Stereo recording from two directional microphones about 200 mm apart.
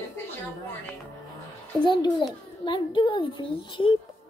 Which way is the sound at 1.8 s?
25° left (ahead or behind).